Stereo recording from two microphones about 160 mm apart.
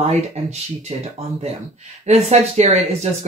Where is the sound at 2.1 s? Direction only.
45° right (ahead or behind).